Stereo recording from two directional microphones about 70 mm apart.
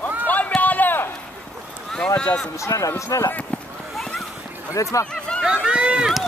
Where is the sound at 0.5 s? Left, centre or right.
Left.